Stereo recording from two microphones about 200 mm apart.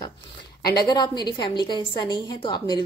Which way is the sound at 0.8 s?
20° left (ahead or behind).